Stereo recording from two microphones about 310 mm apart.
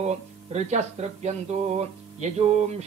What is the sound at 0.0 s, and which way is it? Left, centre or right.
Speech, right.